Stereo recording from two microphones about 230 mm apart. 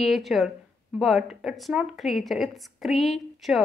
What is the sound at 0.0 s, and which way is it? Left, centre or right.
A woman's voice, centre.